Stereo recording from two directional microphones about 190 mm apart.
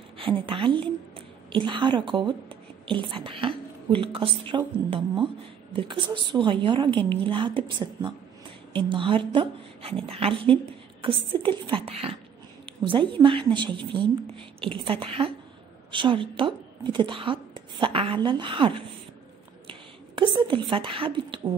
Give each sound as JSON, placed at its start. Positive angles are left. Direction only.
{"t": 0.2, "sound": "a woman's voice", "side_deg": -25}